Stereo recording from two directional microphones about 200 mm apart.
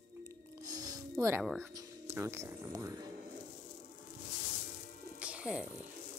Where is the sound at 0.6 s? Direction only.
20° right (ahead or behind).